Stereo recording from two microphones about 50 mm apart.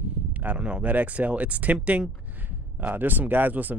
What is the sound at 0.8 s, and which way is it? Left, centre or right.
Speech, right.